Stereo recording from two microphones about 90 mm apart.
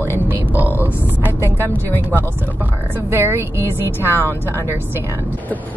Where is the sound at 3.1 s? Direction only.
25° right (ahead or behind).